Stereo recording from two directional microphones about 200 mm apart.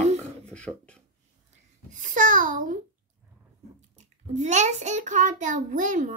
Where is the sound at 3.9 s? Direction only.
35° right (ahead or behind).